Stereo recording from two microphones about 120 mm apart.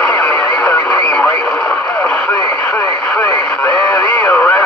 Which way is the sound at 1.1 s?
10° left (ahead or behind).